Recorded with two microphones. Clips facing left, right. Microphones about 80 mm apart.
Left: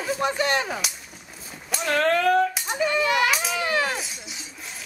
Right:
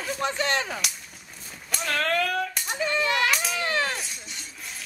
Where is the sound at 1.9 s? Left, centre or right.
Left.